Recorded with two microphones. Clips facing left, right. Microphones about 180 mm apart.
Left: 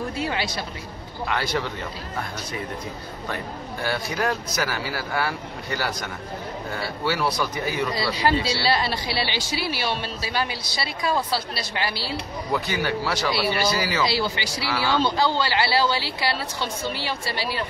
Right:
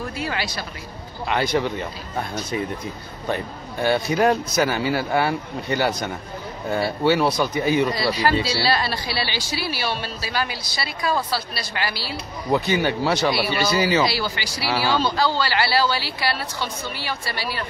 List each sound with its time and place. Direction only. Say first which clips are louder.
0.1 s speech: left 1 dB; 25° left (ahead or behind)
1.2 s speech: right 4 dB; 20° right (ahead or behind)
3.8 s speech: right 7 dB; 20° right (ahead or behind)
8.5 s a woman's voice: right 1 dB; 20° left (ahead or behind)
12.4 s speech: right 5 dB; 25° right (ahead or behind)
14.0 s a woman's voice: even; 25° left (ahead or behind)
14.6 s speech: right 3 dB; 30° right (ahead or behind)
15.0 s a woman's voice: even; 20° left (ahead or behind)